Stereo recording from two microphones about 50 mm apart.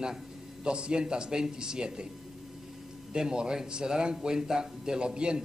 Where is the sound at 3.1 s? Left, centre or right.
Centre.